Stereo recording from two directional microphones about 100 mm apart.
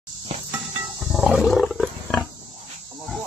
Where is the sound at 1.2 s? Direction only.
5° right (ahead or behind).